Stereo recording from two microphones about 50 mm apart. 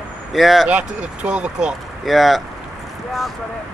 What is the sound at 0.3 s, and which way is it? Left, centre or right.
Speech, centre.